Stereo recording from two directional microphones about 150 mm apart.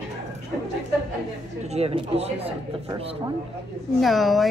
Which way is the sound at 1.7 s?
45° right (ahead or behind).